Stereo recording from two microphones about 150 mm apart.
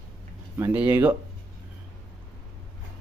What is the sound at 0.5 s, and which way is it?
Speech, 15° right (ahead or behind).